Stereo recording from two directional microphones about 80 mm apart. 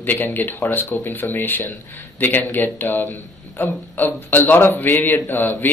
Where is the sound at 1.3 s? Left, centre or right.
Left.